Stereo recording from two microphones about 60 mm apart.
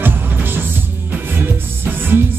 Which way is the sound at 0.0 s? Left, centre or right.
Right.